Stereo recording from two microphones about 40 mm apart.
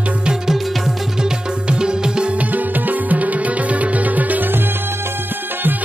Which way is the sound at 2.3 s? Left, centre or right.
Right.